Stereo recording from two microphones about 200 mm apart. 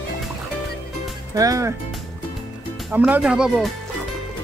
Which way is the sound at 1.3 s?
15° right (ahead or behind).